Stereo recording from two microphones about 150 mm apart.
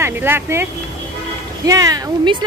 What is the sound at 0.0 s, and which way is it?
Speech, 15° right (ahead or behind).